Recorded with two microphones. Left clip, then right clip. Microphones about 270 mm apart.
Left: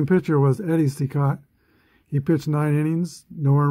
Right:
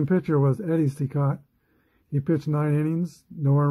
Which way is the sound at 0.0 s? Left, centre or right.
Centre.